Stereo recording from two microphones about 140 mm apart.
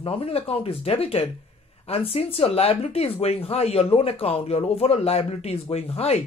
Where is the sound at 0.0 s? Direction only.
45° left (ahead or behind).